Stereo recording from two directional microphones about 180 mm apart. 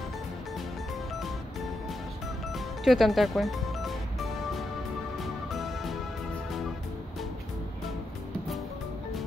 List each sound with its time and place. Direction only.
2.5 s music: centre (ahead or behind)